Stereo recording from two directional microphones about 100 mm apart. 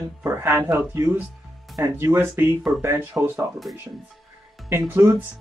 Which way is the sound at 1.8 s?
25° right (ahead or behind).